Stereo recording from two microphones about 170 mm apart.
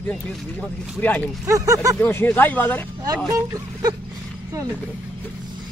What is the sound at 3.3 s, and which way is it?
Speech, 20° right (ahead or behind).